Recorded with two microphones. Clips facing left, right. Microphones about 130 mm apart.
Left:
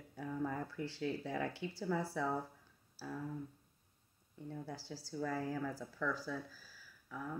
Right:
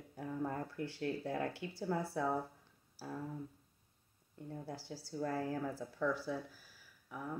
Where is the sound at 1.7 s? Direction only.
25° right (ahead or behind).